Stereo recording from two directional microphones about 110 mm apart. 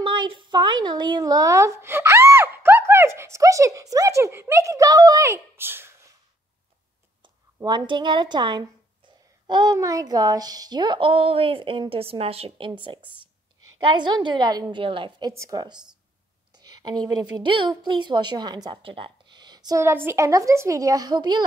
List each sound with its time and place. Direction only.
0.0 s a woman's voice: 45° right (ahead or behind); by 5.9 s 20° right (ahead or behind)
7.6 s a woman's voice: 45° right (ahead or behind)
19.8 s a woman's voice: 20° right (ahead or behind); by 21.5 s 40° right (ahead or behind)